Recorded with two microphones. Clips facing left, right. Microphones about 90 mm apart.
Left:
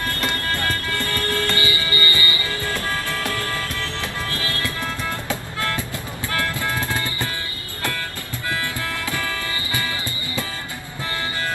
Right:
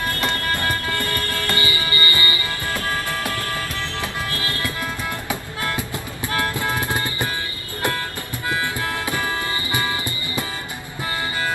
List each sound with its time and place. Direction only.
0.6 s music: 20° right (ahead or behind)
8.5 s music: 20° right (ahead or behind)